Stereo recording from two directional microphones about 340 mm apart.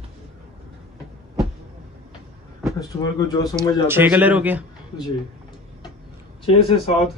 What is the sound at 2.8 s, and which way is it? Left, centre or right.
Speech, centre.